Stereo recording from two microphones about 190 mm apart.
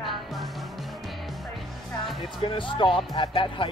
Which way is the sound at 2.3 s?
25° left (ahead or behind).